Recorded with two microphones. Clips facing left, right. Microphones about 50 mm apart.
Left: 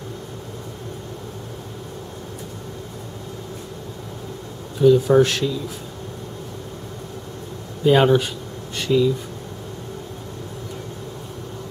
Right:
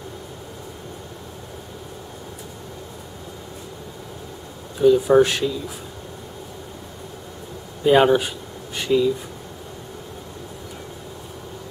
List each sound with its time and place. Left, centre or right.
4.7 s speech: centre
7.8 s speech: centre